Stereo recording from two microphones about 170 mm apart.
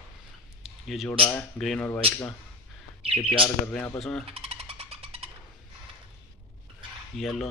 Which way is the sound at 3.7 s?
10° left (ahead or behind).